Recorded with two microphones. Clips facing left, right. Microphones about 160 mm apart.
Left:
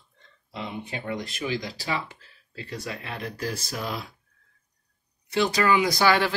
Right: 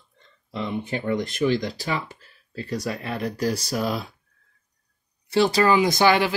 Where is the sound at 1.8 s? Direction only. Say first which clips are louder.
Right 2 dB; 40° right (ahead or behind).